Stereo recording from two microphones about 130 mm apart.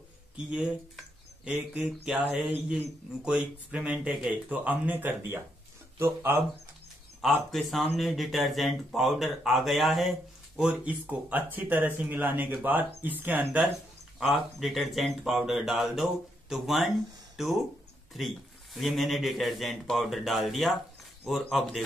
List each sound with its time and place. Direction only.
0.5 s speech: 5° right (ahead or behind)
7.2 s speech: centre (ahead or behind)
14.2 s speech: centre (ahead or behind)